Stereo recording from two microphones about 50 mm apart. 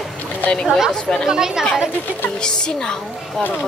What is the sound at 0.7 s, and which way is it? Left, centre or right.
Speech, centre.